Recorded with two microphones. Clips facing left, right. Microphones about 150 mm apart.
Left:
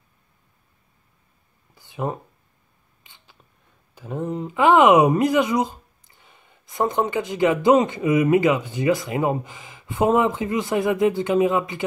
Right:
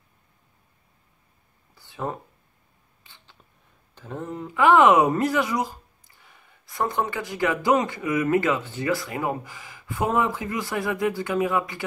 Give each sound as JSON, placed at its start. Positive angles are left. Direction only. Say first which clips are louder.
{"t": 1.8, "sound": "a sound", "louder": "left 3 dB", "side_deg": 15}
{"t": 3.0, "sound": "camera", "louder": "even", "side_deg": 15}
{"t": 3.9, "sound": "speech", "louder": "left 6 dB", "side_deg": 10}